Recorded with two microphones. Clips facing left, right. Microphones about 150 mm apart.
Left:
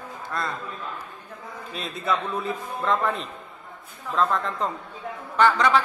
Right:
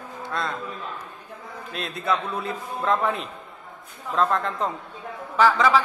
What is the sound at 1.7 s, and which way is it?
A man's voice, centre (ahead or behind).